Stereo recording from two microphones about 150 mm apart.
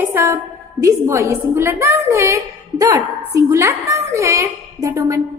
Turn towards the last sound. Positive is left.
turn(degrees=-20)  # may be behind; listen again after turning